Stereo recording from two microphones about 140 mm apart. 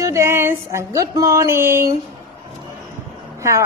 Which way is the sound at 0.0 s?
20° right (ahead or behind).